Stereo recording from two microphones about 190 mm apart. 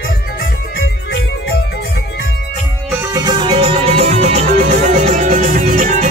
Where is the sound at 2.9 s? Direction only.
15° right (ahead or behind); by 6.1 s 45° right (ahead or behind).